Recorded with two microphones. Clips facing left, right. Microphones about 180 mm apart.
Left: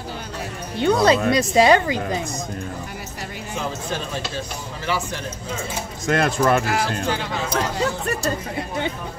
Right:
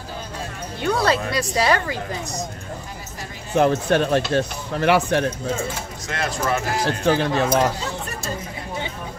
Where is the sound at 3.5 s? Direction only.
60° right (ahead or behind).